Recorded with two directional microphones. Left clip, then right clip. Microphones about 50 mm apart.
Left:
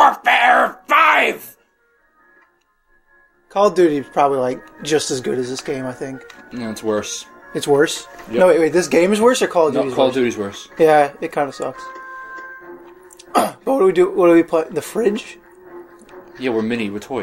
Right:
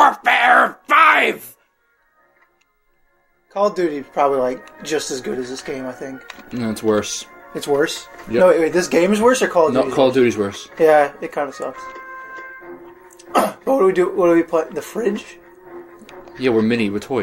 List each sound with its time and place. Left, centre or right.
0.0 s a sound: centre
3.4 s speech: left
6.6 s speech: centre
7.8 s speech: left
9.7 s speech: right
10.8 s speech: left
16.4 s speech: centre